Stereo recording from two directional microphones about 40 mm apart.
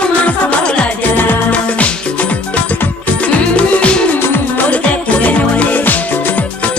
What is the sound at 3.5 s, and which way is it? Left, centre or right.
Music, left.